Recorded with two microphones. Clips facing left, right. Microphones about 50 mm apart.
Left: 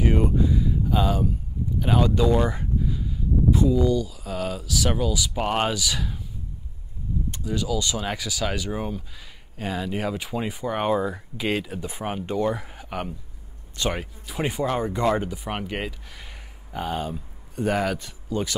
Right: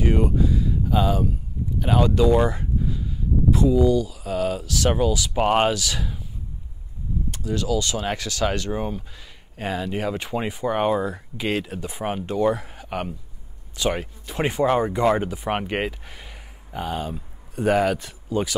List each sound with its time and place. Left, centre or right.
0.0 s speech: centre
2.5 s a sound: centre
3.6 s speech: centre
5.3 s speech: right
5.7 s speech: centre
7.4 s speech: centre
9.1 s speech: centre
14.6 s speech: right
16.2 s speech: centre